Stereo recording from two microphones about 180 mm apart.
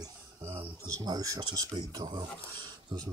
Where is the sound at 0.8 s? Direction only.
20° right (ahead or behind).